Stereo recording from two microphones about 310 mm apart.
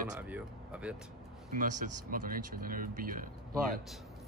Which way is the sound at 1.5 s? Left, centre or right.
Right.